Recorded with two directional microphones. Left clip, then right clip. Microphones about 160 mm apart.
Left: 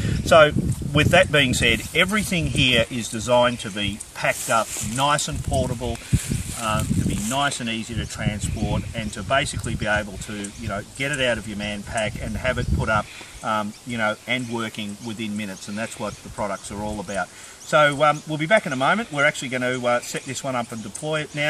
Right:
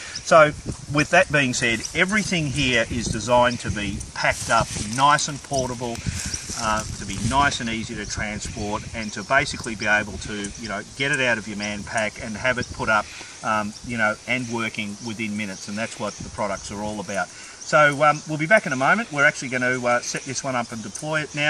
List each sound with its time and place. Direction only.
0.3 s speech: 20° left (ahead or behind)
7.2 s speech: 35° left (ahead or behind); by 13.0 s 20° left (ahead or behind)
13.5 s speech: 5° left (ahead or behind)